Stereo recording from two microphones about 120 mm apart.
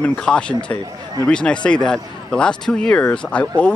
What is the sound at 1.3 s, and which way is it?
Speech, 10° left (ahead or behind).